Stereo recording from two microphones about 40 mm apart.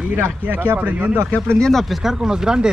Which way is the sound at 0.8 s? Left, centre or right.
Right.